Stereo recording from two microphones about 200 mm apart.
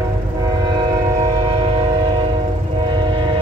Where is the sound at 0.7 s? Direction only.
20° right (ahead or behind).